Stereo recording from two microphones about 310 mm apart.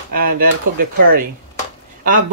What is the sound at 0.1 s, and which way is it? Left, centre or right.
Speech, right.